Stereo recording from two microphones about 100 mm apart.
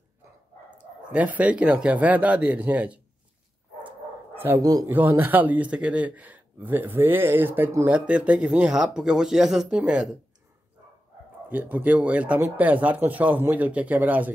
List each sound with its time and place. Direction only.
1.1 s speech: 15° right (ahead or behind)
4.6 s speech: 40° right (ahead or behind)
4.8 s speech: 20° right (ahead or behind)
11.4 s speech: 15° right (ahead or behind)